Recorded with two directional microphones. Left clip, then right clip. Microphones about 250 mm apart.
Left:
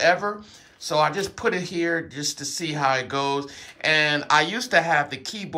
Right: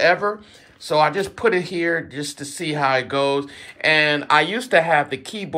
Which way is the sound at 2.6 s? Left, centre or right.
Centre.